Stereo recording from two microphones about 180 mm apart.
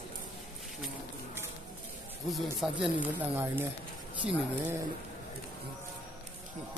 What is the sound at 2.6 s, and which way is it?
Speech, 5° right (ahead or behind).